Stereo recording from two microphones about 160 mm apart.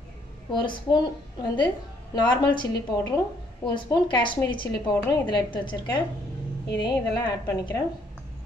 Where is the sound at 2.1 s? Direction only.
25° left (ahead or behind).